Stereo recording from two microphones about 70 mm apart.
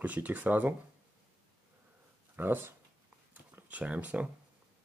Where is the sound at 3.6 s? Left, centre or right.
Centre.